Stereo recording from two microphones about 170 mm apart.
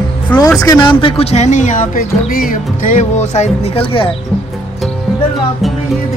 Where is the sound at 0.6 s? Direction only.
25° left (ahead or behind).